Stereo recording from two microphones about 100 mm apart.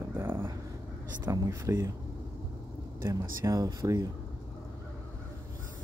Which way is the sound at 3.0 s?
35° right (ahead or behind).